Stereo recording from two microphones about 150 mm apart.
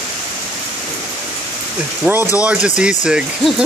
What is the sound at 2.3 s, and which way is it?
Speech, 5° right (ahead or behind).